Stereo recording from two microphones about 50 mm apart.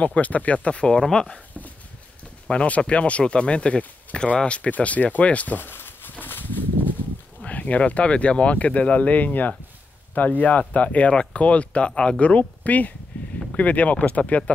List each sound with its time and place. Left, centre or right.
0.0 s speech: left; by 1.4 s centre
2.4 s speech: left
5.6 s a sound: left
7.4 s speech: left
13.1 s a sound: left
13.6 s speech: left